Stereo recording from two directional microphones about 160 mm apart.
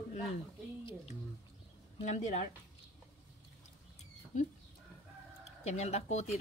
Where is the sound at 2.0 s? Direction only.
45° left (ahead or behind).